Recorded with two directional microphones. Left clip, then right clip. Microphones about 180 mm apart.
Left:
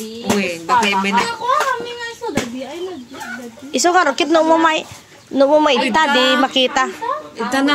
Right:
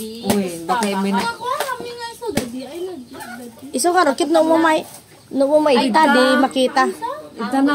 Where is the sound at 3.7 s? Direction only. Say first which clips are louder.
Left 2 dB; 10° right (ahead or behind).